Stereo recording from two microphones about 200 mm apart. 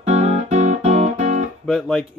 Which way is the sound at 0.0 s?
35° right (ahead or behind).